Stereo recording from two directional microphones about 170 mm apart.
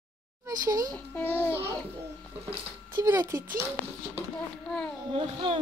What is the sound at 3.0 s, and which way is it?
Speech, 15° right (ahead or behind).